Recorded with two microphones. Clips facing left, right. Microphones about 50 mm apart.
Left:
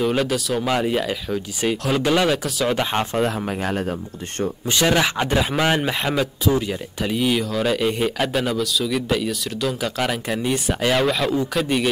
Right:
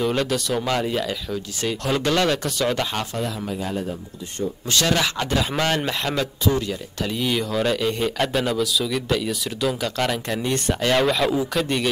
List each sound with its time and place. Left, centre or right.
0.0 s speech: centre
0.7 s speech: centre
2.8 s speech: left
3.2 s speech: left
4.6 s speech: centre